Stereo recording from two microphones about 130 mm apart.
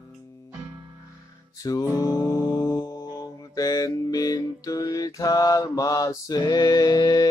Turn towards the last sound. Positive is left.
turn(degrees=30)  # may be behind; listen again after turning